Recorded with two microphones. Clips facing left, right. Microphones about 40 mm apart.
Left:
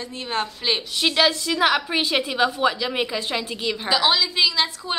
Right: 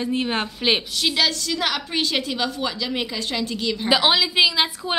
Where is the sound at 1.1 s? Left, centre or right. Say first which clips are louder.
Left 3 dB; centre.